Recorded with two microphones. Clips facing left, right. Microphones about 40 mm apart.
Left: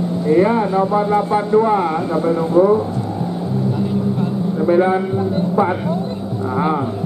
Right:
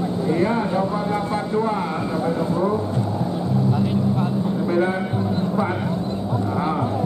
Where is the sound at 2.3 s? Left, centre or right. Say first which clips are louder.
Left 10 dB; left.